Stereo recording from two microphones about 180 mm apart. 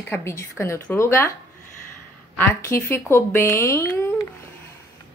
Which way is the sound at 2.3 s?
15° left (ahead or behind).